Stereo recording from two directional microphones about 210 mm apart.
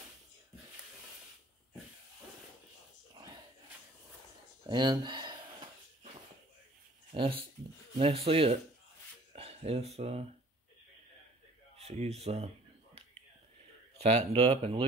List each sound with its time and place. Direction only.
4.6 s speech: 20° right (ahead or behind)
7.1 s a sound: 25° right (ahead or behind)
8.0 s speech: 25° right (ahead or behind)
11.8 s speech: 30° right (ahead or behind)
13.9 s speech: 30° right (ahead or behind)